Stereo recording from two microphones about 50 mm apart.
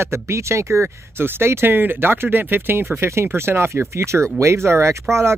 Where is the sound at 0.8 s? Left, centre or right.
Right.